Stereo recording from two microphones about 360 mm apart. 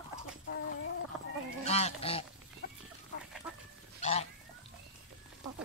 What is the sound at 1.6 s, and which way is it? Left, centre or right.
Goose, centre.